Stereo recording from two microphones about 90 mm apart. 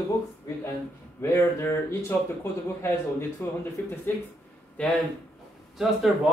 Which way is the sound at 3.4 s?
20° left (ahead or behind).